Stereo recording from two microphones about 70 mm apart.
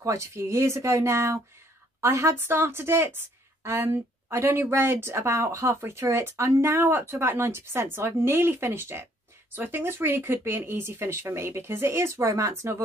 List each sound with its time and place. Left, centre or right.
0.0 s a woman's voice: right
2.3 s a woman's voice: right